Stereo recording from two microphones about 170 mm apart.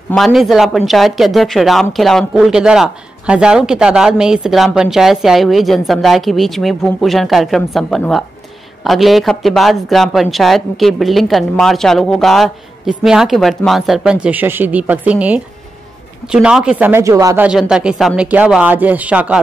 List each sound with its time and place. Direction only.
0.1 s speech: centre (ahead or behind)
16.8 s speech: 15° right (ahead or behind)
17.5 s speech: 5° right (ahead or behind)